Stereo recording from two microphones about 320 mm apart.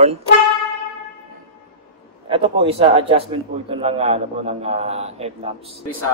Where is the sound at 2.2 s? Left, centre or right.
Centre.